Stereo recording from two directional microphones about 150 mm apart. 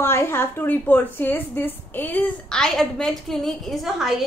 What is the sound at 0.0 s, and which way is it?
A woman's voice, 15° left (ahead or behind).